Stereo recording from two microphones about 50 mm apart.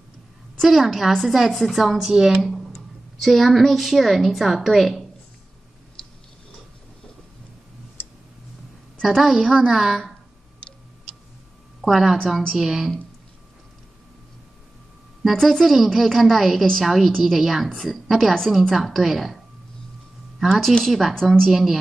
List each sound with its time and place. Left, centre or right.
0.6 s a woman's voice: centre
9.0 s a woman's voice: centre
10.6 s tick-tock: left
11.8 s a woman's voice: centre
15.4 s a woman's voice: centre
18.5 s a woman's voice: centre